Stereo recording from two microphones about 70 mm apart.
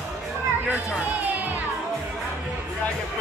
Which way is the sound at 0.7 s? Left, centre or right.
Centre.